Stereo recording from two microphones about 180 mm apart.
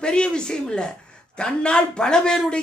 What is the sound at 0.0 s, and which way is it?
A man's voice, 5° left (ahead or behind).